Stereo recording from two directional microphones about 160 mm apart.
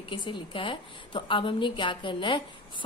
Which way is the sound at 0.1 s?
30° left (ahead or behind).